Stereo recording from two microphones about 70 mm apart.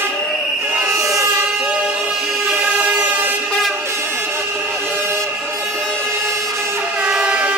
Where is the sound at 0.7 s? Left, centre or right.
Right.